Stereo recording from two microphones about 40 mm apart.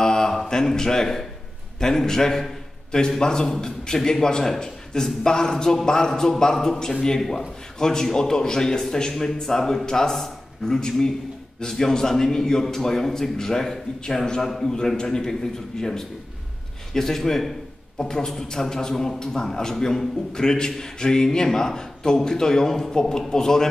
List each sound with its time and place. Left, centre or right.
0.0 s mantra: centre
0.5 s a man's voice: centre